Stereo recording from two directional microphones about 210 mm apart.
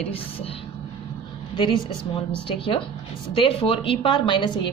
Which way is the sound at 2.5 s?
25° left (ahead or behind).